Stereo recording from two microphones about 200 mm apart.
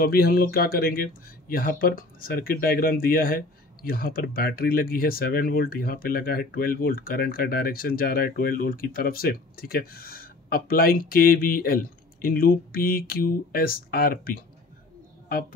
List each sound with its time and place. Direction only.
0.0 s speech: 50° left (ahead or behind)